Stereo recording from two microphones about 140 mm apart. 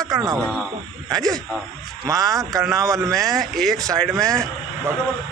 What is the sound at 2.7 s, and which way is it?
Speech, 20° right (ahead or behind).